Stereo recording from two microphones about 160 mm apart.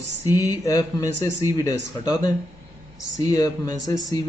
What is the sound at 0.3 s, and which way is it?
Speech, 20° left (ahead or behind).